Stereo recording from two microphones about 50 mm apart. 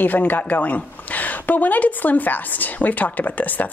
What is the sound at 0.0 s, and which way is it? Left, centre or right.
A woman's voice, left.